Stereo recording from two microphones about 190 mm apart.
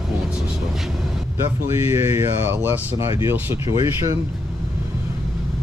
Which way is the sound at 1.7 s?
15° right (ahead or behind).